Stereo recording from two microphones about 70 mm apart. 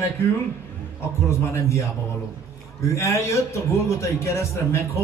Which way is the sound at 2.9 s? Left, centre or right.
Left.